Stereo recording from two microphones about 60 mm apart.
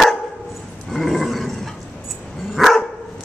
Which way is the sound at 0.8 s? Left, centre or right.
Centre.